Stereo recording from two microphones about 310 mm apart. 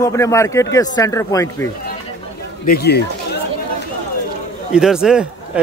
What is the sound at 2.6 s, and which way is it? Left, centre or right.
Speech, left.